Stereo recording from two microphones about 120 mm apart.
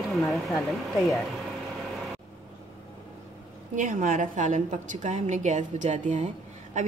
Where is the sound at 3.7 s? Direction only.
90° right.